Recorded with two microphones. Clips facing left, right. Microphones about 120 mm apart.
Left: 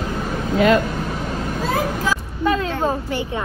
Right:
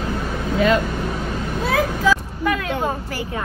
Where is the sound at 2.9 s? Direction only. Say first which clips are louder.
Left 3 dB; 25° left (ahead or behind).